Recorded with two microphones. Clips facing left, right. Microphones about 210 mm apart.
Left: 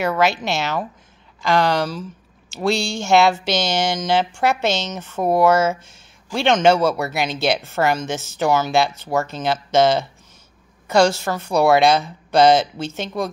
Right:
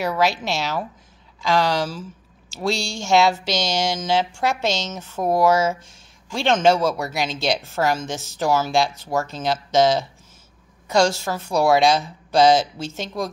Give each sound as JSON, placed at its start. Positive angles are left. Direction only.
{"t": 0.0, "sound": "speech", "side_deg": 0}